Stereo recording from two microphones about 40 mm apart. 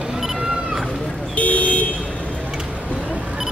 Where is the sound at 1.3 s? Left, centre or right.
Left.